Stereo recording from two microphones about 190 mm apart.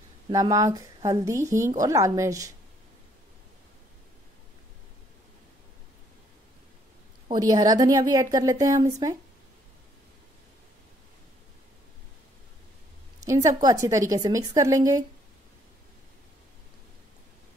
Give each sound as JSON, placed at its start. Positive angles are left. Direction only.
{"t": 0.3, "sound": "a woman's voice", "side_deg": -20}
{"t": 7.2, "sound": "a woman's voice", "side_deg": -20}
{"t": 13.2, "sound": "a woman's voice", "side_deg": -15}